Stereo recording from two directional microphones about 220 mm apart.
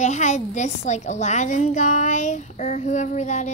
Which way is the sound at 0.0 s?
35° left (ahead or behind).